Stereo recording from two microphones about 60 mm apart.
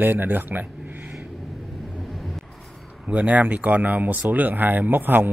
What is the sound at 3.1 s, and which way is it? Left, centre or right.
Speech, right.